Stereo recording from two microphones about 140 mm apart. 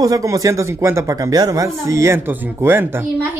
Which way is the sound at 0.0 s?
25° right (ahead or behind).